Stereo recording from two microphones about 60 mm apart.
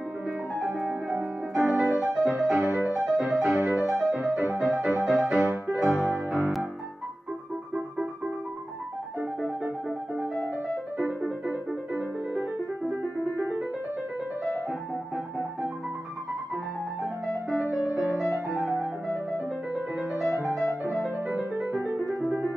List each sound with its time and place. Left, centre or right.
1.5 s music: centre
9.4 s music: centre
11.2 s music: centre
17.6 s music: centre
19.7 s music: centre
21.3 s music: right